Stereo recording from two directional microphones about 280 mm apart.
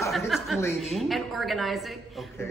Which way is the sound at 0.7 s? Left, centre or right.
Centre.